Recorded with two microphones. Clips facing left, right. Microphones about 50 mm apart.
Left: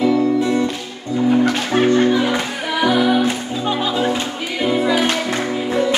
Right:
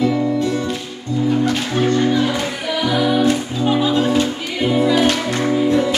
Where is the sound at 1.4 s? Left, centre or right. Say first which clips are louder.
Left 2 dB; left.